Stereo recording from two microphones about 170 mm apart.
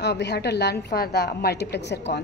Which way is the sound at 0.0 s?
90° left.